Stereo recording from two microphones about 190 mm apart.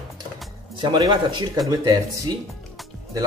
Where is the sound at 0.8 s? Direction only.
20° right (ahead or behind).